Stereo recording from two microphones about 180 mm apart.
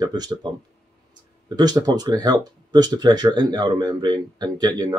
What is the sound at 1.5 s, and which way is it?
Speech, 25° right (ahead or behind).